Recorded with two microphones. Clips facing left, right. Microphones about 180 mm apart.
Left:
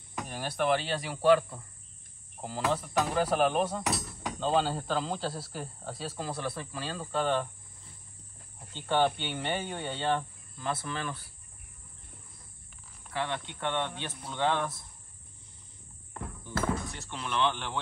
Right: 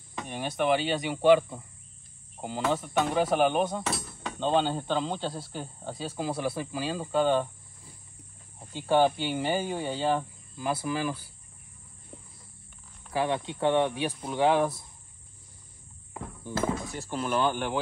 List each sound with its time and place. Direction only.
0.1 s speech: centre (ahead or behind)
3.9 s hammer: centre (ahead or behind)
4.4 s speech: centre (ahead or behind)
8.7 s speech: 5° right (ahead or behind)
13.2 s speech: 20° right (ahead or behind)
16.1 s walk: 5° right (ahead or behind)
16.9 s speech: 45° right (ahead or behind)